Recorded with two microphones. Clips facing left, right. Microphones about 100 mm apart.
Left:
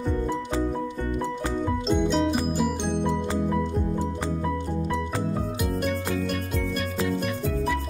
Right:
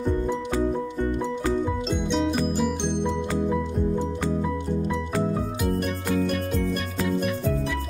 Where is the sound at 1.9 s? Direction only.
Centre (ahead or behind).